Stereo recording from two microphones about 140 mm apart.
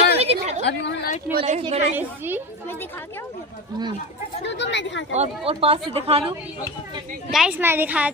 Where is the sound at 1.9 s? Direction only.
15° right (ahead or behind).